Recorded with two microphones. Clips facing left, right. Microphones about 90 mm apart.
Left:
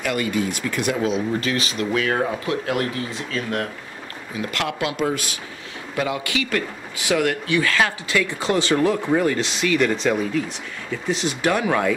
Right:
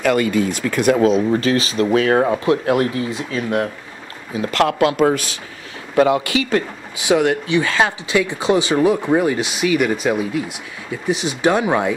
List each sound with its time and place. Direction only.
0.6 s speech: 50° right (ahead or behind); by 3.6 s 20° right (ahead or behind)
4.4 s speech: 40° right (ahead or behind)
6.3 s speech: 25° right (ahead or behind)